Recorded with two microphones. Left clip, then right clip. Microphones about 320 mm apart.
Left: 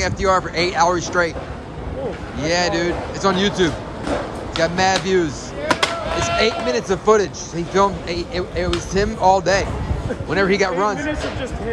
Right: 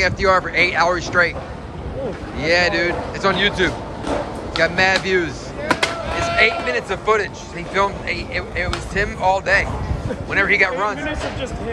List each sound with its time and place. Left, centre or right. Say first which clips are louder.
0.0 s speech: right 2 dB; centre
2.4 s speech: right 2 dB; centre